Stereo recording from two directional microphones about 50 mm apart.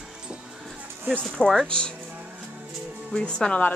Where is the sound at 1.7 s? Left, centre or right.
Centre.